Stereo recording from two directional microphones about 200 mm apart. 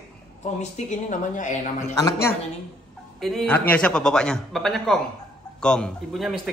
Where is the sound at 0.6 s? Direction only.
35° left (ahead or behind).